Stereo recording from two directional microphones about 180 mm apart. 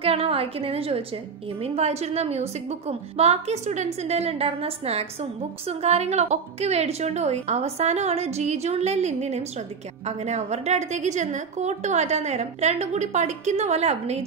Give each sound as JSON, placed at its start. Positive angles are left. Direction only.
{"t": 0.0, "sound": "a woman's voice", "side_deg": -30}